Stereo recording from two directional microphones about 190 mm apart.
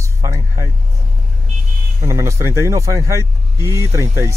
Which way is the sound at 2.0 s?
15° right (ahead or behind).